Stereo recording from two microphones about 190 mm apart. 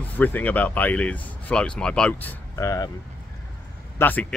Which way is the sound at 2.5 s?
15° left (ahead or behind).